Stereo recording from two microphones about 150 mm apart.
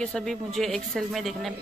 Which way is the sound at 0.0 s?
5° left (ahead or behind).